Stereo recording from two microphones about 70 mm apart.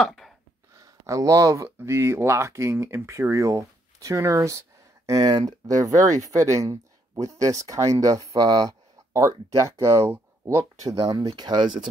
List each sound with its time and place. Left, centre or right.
0.0 s a sound: centre
0.7 s speech: right
1.8 s speech: right
8.4 s speech: right
9.7 s speech: right
11.1 s speech: right